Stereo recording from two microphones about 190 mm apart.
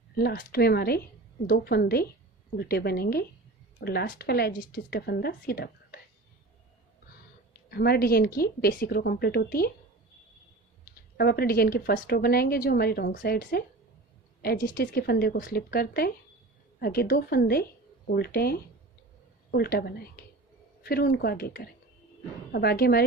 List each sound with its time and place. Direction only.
0.2 s a woman's voice: 55° left (ahead or behind)
7.7 s a woman's voice: 55° left (ahead or behind)
11.1 s a woman's voice: 55° left (ahead or behind)